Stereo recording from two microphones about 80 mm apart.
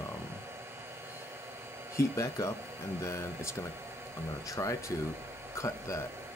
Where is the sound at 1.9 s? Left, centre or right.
Left.